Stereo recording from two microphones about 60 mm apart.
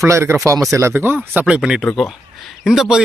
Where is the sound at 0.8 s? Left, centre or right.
Right.